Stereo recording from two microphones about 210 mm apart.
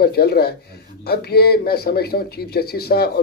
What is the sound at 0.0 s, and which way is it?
Speech, 50° left (ahead or behind).